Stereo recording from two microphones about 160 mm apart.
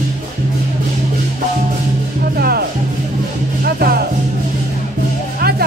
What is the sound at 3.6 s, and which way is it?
Music, 75° right (ahead or behind).